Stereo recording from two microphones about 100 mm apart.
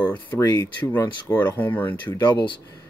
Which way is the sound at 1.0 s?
20° left (ahead or behind).